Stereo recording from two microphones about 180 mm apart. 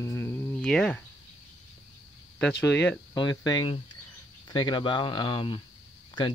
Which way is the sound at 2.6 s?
10° left (ahead or behind).